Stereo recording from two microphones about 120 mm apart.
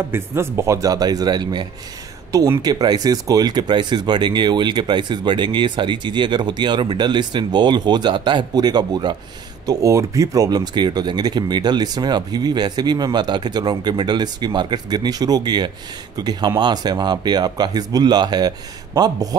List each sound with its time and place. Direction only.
0.1 s speech: 20° right (ahead or behind)